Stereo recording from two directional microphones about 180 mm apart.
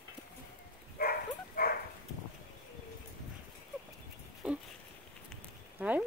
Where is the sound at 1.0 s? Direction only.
55° left (ahead or behind).